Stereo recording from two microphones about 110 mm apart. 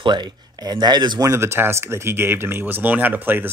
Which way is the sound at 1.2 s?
25° right (ahead or behind).